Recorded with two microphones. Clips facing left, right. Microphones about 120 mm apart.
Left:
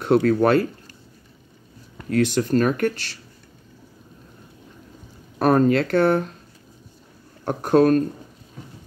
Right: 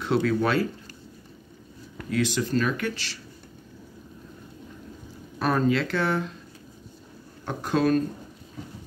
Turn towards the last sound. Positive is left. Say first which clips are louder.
# left 7 dB
turn(degrees=50)  # may be behind; listen again after turning